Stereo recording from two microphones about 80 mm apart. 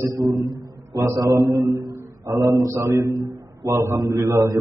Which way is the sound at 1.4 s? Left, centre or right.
Right.